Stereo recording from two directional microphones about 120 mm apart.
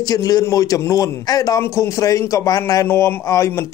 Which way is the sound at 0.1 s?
30° left (ahead or behind).